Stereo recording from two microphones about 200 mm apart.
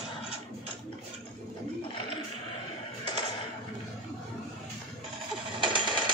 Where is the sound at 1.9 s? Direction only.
25° left (ahead or behind).